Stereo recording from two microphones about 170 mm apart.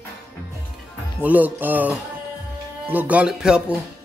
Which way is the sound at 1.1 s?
10° right (ahead or behind).